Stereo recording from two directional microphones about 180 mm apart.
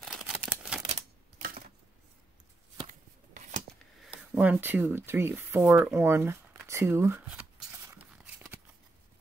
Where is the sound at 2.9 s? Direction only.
45° right (ahead or behind).